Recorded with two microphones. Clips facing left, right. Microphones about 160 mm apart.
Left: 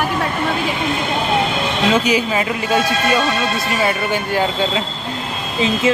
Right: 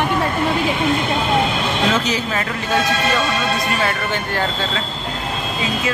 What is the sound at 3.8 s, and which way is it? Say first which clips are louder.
Speech: left 3 dB; 10° left (ahead or behind).